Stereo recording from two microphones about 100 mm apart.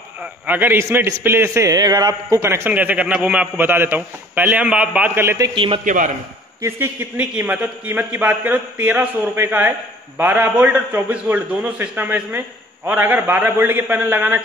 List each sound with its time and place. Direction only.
0.2 s a man's voice: 20° right (ahead or behind)
1.7 s a man's voice: 40° right (ahead or behind)
2.5 s a man's voice: 20° right (ahead or behind)
5.5 s a man's voice: 55° right (ahead or behind)
6.6 s a man's voice: 25° right (ahead or behind)
7.2 s a man's voice: 10° right (ahead or behind)